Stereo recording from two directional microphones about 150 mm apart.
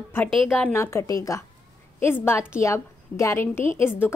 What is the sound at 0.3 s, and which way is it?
Speech, centre (ahead or behind).